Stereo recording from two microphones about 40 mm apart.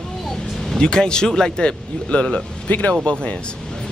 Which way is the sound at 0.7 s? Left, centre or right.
Left.